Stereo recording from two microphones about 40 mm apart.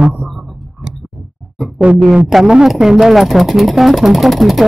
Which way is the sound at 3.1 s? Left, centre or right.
Centre.